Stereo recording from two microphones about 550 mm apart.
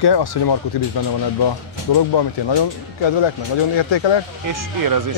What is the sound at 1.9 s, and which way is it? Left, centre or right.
Speech, left.